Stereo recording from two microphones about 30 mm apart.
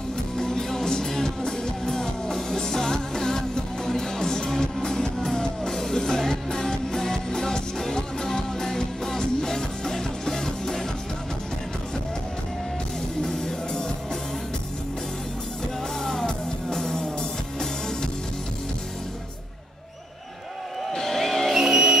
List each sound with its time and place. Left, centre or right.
0.4 s music: centre
4.5 s music: centre
13.2 s music: centre
16.0 s music: centre
20.9 s music: centre
21.5 s music: centre